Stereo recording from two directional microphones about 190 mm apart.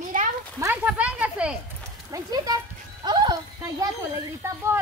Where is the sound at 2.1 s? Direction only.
20° right (ahead or behind).